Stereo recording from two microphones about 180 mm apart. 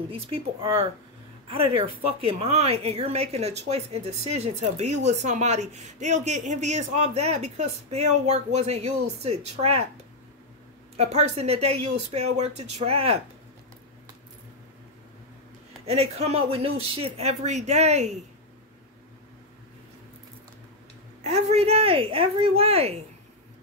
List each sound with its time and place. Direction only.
0.1 s speech: 30° right (ahead or behind)
11.0 s speech: 35° right (ahead or behind)
15.8 s speech: 35° right (ahead or behind)
21.2 s speech: 35° right (ahead or behind)